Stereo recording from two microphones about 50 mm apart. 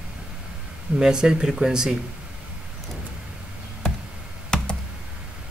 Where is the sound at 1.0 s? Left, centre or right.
Centre.